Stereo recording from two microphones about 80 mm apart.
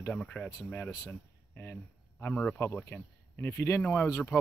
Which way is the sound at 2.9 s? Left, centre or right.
Left.